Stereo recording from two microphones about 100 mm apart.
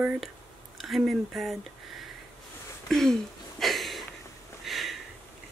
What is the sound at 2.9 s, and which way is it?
Speech, 5° left (ahead or behind).